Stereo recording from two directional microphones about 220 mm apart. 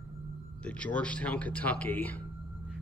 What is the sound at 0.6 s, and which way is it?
Speech, 5° left (ahead or behind).